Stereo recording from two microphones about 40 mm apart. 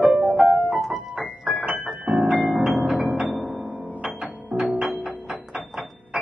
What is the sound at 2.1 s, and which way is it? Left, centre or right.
Music, right.